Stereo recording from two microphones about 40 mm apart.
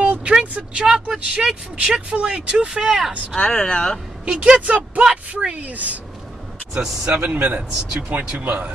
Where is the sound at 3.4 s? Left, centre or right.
Left.